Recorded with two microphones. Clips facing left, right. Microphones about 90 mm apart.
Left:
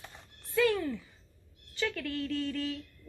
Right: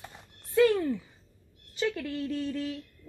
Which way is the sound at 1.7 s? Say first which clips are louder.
Right 3 dB; 20° right (ahead or behind).